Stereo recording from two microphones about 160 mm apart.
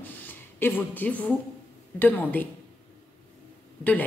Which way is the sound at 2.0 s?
10° left (ahead or behind).